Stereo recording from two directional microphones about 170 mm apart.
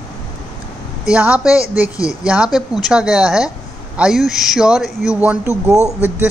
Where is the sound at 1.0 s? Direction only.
5° right (ahead or behind).